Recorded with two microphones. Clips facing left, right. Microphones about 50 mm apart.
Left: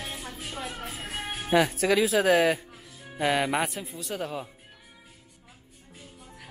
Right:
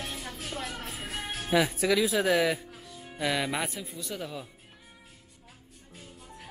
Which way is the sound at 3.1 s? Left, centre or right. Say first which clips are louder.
Left 4 dB; left.